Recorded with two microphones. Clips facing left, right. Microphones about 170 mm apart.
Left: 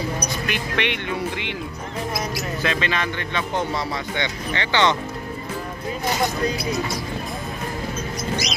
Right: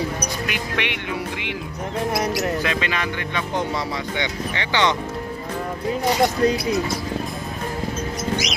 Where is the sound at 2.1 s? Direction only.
75° right (ahead or behind).